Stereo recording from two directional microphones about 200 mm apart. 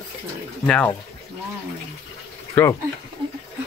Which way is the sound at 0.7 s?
5° left (ahead or behind).